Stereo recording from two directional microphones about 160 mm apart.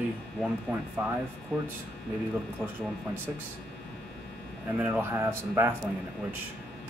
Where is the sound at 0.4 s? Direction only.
15° right (ahead or behind).